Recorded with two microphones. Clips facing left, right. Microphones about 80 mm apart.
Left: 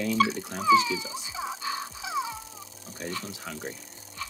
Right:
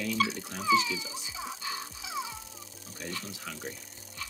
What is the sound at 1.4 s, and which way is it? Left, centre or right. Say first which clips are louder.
Music: left 6 dB; left.